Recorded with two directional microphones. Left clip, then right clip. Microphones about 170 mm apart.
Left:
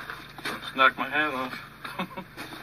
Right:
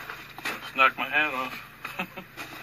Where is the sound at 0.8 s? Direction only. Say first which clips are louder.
Even; 10° left (ahead or behind).